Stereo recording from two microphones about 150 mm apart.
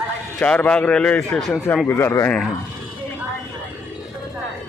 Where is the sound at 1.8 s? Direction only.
15° left (ahead or behind).